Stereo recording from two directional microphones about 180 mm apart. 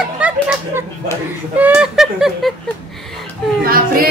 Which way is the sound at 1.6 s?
5° right (ahead or behind).